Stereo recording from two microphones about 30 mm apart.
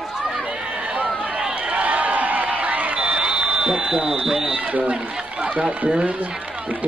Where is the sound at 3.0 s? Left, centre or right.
Right.